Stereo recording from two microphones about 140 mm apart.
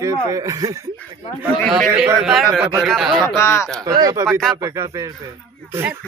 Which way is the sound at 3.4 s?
20° left (ahead or behind).